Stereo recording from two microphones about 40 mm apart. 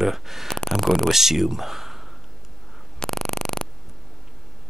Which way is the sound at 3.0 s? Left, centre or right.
Centre.